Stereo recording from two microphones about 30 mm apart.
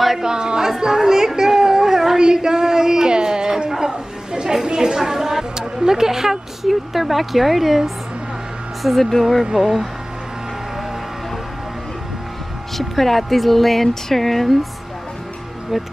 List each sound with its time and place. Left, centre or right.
0.2 s a sound: right
4.6 s chatter: right
4.9 s a sound: centre
6.7 s speech: centre
12.7 s speech: centre
15.7 s speech: centre